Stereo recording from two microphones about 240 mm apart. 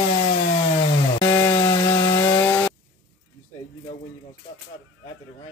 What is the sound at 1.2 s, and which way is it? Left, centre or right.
Wood, centre.